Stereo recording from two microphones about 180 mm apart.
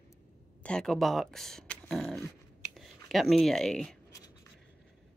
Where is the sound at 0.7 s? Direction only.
5° left (ahead or behind).